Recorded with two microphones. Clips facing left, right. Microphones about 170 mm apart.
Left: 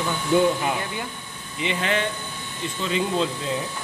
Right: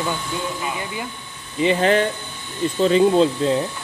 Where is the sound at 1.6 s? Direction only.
40° right (ahead or behind).